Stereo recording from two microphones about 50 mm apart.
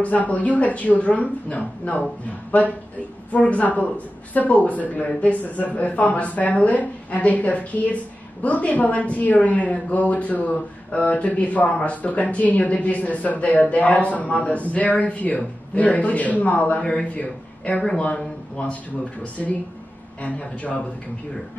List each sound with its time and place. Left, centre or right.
0.0 s speech: left
3.3 s speech: left
16.8 s speech: centre
17.2 s speech: left
20.2 s speech: left